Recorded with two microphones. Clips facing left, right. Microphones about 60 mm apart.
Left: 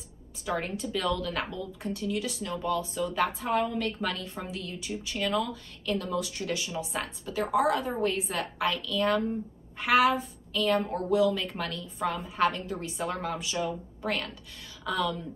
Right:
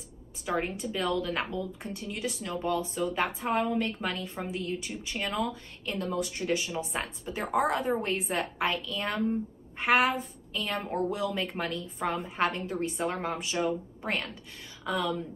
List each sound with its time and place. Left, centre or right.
0.5 s speech: right